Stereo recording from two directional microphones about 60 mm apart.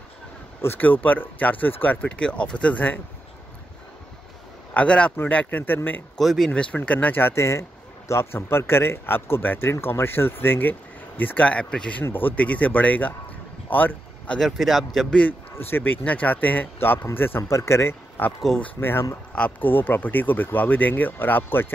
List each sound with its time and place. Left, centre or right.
0.7 s speech: left
2.0 s speech: centre
4.7 s speech: centre
6.1 s a man's voice: centre
6.5 s speech: centre
7.2 s speech: left; by 12.0 s centre
12.0 s speech: left
14.4 s a man's voice: centre
15.0 s speech: centre
15.5 s speech: left
17.4 s speech: left
18.2 s speech: left